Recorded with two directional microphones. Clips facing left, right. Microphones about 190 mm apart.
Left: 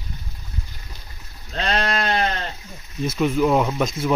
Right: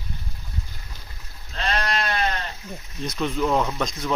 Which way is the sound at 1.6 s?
35° left (ahead or behind).